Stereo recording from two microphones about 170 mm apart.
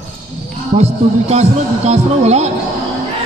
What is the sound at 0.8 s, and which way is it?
A man's voice, 40° right (ahead or behind).